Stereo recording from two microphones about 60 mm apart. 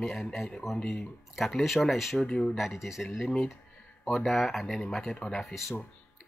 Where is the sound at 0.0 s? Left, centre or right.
Centre.